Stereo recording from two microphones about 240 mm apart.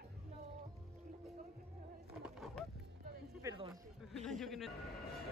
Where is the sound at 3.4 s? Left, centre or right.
Centre.